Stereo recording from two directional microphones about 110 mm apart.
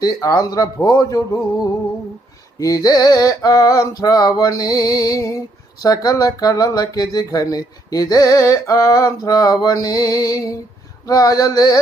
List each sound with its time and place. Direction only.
0.0 s male singing: 35° left (ahead or behind)